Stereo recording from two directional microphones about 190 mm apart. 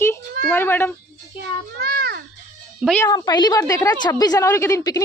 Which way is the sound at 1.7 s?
50° right (ahead or behind).